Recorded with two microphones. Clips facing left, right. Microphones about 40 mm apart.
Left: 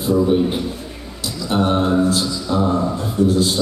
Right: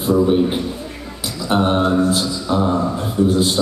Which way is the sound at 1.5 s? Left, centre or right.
Centre.